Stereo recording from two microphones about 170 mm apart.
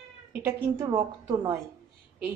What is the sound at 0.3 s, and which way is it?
A woman's voice, 15° right (ahead or behind).